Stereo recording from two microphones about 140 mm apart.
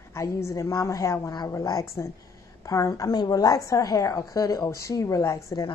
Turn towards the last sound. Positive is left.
turn(degrees=20)  # may be behind; listen again after turning